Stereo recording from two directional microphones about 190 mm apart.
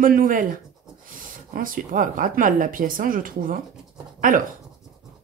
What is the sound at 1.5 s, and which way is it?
Speech, 45° right (ahead or behind).